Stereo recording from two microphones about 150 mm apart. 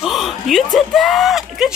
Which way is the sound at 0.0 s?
Centre (ahead or behind).